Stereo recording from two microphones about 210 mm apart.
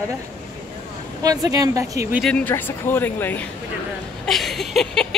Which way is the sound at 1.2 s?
15° right (ahead or behind).